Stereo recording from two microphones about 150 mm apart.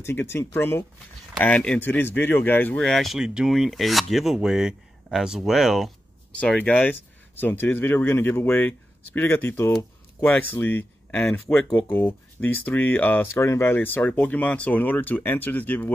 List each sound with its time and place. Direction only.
0.0 s speech: 15° left (ahead or behind)